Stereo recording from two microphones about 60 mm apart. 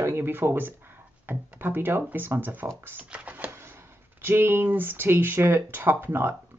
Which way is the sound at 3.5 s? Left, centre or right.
Right.